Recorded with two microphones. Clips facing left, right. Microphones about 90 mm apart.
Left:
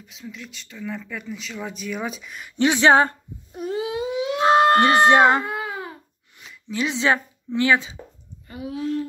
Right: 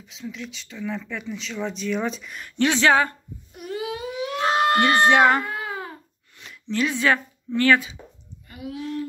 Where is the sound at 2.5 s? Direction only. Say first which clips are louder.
Left 3 dB; 15° left (ahead or behind).